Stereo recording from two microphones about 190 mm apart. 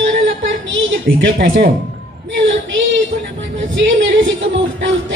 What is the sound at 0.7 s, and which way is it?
Speech, 80° right.